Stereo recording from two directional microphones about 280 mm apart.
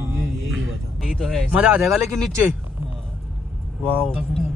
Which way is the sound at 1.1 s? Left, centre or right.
Centre.